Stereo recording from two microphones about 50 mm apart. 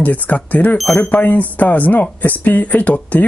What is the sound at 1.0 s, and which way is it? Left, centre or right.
Speech, left.